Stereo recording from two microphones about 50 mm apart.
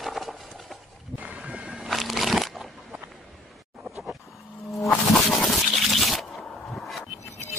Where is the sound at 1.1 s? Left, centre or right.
Right.